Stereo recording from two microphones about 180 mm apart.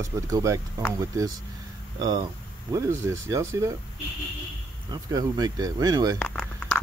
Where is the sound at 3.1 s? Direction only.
15° right (ahead or behind).